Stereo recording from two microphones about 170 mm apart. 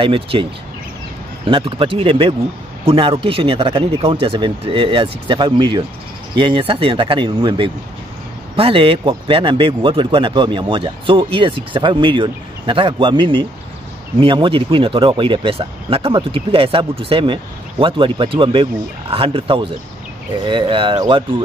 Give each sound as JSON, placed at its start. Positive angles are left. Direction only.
{"t": 0.0, "sound": "speech", "side_deg": -30}